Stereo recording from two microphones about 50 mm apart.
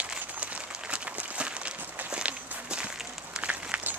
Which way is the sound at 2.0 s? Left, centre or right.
Right.